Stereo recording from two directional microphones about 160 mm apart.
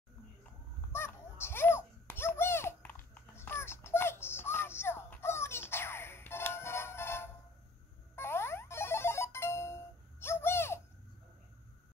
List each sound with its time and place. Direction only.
0.9 s babbling: 15° left (ahead or behind)
8.2 s music: 15° left (ahead or behind)
10.2 s bird: 15° left (ahead or behind)